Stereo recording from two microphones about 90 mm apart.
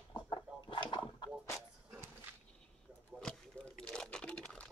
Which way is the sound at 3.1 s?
10° left (ahead or behind).